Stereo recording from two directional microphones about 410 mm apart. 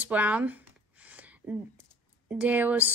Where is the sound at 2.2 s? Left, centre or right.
Centre.